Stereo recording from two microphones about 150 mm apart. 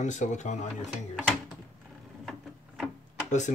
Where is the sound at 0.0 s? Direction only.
55° left (ahead or behind).